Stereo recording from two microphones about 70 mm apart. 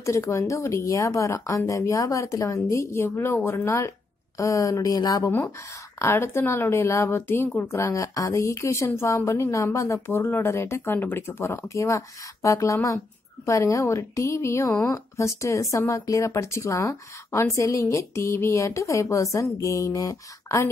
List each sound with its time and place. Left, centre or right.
0.0 s a woman's voice: left
5.2 s a woman's voice: left
7.6 s speech: left
10.0 s a woman's voice: left
11.6 s speech: left